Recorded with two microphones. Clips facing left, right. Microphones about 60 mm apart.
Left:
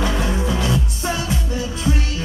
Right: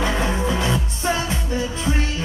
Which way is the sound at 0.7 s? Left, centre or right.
Right.